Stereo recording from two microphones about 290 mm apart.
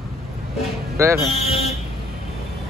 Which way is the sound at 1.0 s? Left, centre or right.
Centre.